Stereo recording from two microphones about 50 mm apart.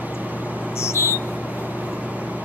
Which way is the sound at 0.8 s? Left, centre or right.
Left.